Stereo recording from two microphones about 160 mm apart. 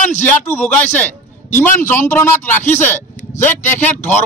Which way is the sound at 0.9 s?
10° left (ahead or behind).